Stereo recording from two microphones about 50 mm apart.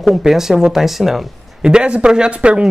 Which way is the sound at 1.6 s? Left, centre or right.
Centre.